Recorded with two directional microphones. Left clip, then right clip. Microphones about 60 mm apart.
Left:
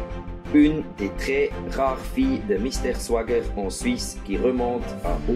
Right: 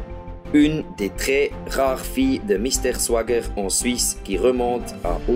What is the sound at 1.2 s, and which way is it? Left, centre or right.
Speech, right.